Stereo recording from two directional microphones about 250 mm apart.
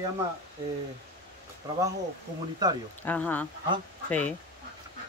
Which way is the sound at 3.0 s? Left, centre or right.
Centre.